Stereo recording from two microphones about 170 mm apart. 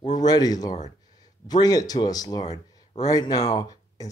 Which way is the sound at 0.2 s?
20° left (ahead or behind).